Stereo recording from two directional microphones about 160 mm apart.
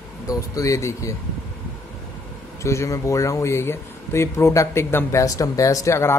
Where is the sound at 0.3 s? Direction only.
20° left (ahead or behind).